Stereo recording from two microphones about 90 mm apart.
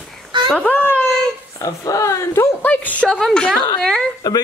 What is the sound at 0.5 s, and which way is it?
Female singing, 15° left (ahead or behind).